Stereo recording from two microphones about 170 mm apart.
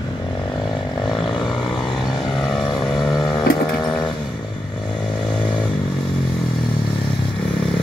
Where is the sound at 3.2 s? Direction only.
25° left (ahead or behind).